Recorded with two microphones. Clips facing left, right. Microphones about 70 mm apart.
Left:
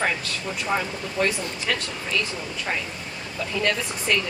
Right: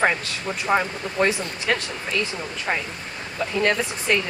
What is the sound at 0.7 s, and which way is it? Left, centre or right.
Speech, right.